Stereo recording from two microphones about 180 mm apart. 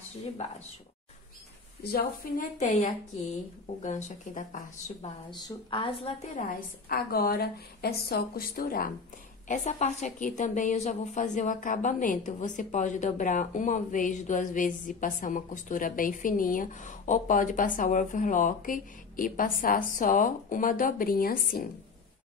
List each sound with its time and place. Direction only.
1.8 s a woman's voice: 60° left (ahead or behind)
2.5 s speech: 40° left (ahead or behind)
5.3 s speech: 30° left (ahead or behind)
6.9 s a woman's voice: 55° left (ahead or behind)